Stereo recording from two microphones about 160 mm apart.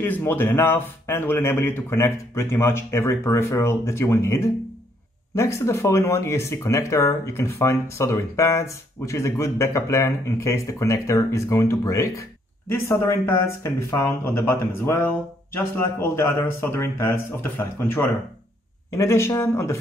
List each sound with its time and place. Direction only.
0.0 s speech: 15° left (ahead or behind)